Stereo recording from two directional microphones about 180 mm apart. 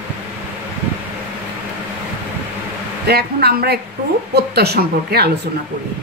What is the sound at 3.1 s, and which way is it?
A woman's voice, 60° right (ahead or behind).